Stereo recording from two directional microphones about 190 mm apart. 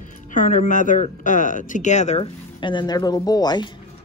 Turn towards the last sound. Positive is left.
turn(degrees=20)  # may be behind; listen again after turning